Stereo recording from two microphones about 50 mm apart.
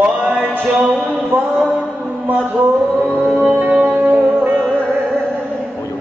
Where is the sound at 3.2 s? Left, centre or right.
Right.